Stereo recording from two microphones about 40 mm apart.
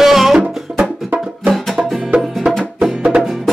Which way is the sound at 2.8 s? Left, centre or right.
Right.